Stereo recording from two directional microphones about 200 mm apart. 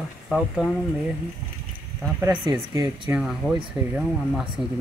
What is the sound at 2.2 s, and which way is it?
Speech, 15° right (ahead or behind).